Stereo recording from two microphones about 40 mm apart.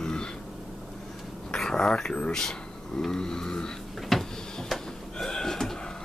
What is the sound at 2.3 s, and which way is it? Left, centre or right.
Speech, centre.